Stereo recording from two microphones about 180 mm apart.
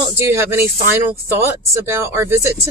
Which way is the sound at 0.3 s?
15° right (ahead or behind).